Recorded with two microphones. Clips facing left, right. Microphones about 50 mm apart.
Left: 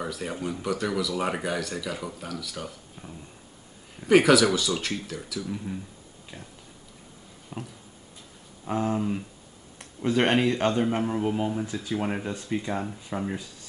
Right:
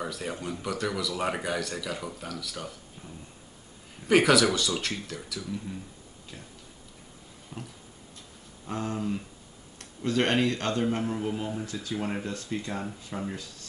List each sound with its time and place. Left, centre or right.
0.0 s speech: centre
4.0 s speech: centre
7.5 s a sound: centre
8.6 s a man's voice: centre